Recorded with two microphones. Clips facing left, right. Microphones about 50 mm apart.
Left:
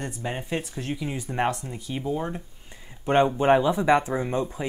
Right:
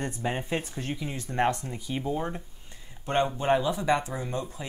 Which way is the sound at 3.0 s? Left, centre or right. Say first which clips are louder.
Left 6 dB; left.